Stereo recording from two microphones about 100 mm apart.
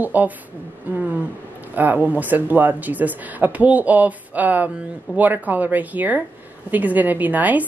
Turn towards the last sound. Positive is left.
turn(degrees=-15)  # may be behind; listen again after turning